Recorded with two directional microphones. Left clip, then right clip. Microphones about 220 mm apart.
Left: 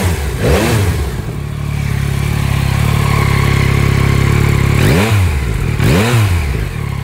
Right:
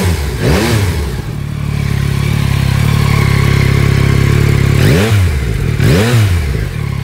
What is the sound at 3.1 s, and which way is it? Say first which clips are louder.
Vehicle: even; 45° left (ahead or behind).